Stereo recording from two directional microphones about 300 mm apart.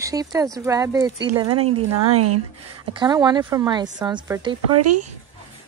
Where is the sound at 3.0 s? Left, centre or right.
Centre.